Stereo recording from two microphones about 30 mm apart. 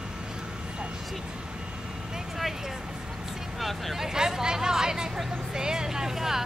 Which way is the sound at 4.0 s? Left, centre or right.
Centre.